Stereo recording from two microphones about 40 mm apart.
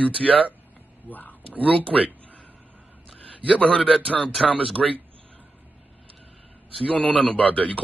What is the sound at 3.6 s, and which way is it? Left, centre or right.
Speech, left.